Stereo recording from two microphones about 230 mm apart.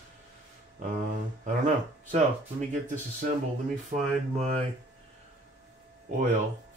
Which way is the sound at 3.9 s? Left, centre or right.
Right.